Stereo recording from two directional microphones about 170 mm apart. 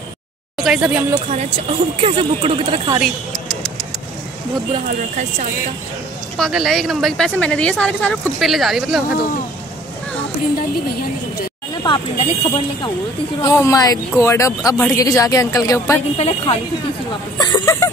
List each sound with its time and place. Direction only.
0.7 s speech: 5° right (ahead or behind)
1.3 s speech: 35° right (ahead or behind)
4.8 s speech: 50° right (ahead or behind)
6.3 s speech: centre (ahead or behind)
11.8 s speech: 30° left (ahead or behind)
16.2 s a woman's voice: 35° left (ahead or behind)
17.4 s speech: 25° left (ahead or behind)